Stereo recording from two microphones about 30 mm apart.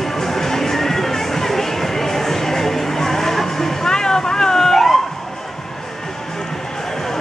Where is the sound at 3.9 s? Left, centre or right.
Left.